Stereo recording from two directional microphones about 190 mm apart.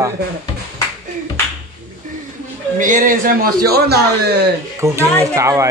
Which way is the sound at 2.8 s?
45° right (ahead or behind).